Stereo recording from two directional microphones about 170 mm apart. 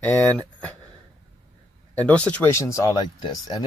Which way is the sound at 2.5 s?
20° left (ahead or behind).